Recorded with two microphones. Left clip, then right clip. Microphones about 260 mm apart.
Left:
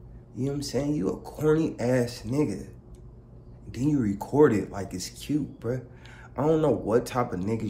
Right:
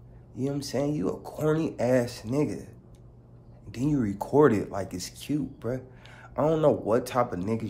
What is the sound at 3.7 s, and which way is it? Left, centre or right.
Speech, centre.